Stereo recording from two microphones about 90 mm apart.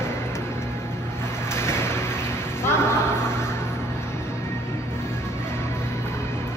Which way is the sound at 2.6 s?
30° left (ahead or behind).